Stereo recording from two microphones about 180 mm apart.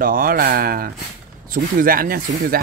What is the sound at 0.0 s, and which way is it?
Speech, 50° right (ahead or behind).